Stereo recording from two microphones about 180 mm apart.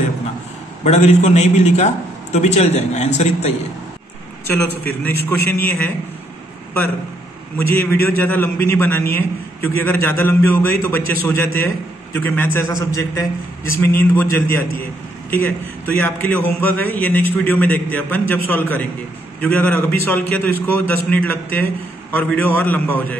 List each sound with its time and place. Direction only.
0.8 s a man's voice: 40° left (ahead or behind)
4.5 s a man's voice: 10° left (ahead or behind)
7.6 s a man's voice: 10° left (ahead or behind)